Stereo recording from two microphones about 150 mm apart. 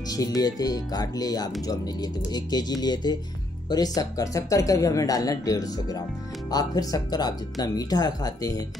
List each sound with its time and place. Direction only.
0.1 s speech: 25° left (ahead or behind)